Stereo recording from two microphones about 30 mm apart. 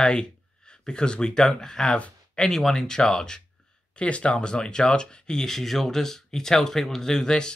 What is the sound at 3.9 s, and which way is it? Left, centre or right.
Speech, left.